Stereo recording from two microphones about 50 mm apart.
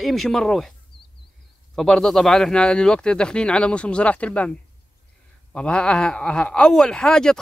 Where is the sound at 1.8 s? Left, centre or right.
Centre.